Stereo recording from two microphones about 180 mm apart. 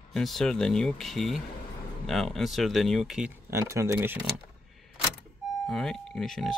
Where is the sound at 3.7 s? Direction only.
15° right (ahead or behind).